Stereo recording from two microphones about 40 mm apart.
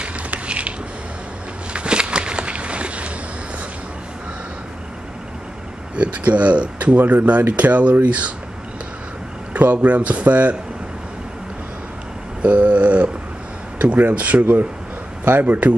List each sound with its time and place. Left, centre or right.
0.0 s a sound: right
5.9 s speech: right
7.0 s speech: right
9.5 s speech: right
12.4 s a sound: right
13.7 s speech: right